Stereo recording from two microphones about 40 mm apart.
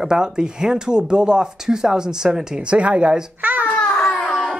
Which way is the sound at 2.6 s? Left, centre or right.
Right.